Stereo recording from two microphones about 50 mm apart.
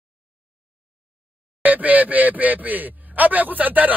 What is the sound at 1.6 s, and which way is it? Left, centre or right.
Speech, right.